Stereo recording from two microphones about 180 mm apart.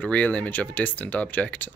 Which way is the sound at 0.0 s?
5° left (ahead or behind).